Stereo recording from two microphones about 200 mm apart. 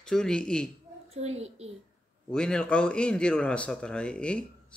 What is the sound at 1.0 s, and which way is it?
Speech, 30° right (ahead or behind).